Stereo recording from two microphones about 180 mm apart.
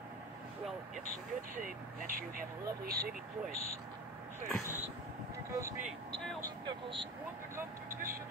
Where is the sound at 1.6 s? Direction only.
50° right (ahead or behind).